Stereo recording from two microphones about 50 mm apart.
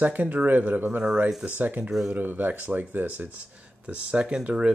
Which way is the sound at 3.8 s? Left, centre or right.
Right.